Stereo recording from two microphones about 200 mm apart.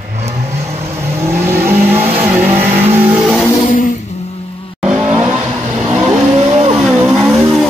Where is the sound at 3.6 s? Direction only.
40° left (ahead or behind).